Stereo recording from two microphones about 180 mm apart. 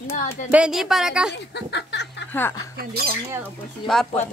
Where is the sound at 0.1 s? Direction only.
45° left (ahead or behind).